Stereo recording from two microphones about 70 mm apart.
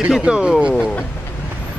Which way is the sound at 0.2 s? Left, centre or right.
Centre.